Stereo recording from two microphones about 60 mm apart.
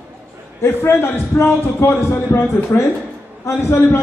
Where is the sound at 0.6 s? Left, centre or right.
Left.